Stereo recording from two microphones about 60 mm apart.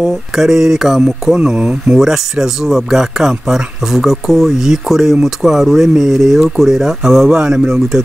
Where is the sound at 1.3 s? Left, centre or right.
Centre.